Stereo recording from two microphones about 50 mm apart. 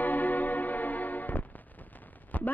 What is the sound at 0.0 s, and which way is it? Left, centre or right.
Music, left.